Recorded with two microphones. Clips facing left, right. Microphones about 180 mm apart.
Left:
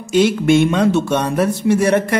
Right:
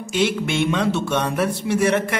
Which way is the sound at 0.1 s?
45° left (ahead or behind).